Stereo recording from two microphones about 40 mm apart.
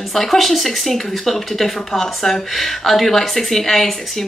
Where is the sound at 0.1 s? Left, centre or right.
Centre.